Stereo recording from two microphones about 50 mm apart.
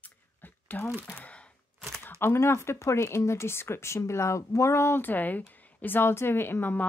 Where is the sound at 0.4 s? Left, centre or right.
Left.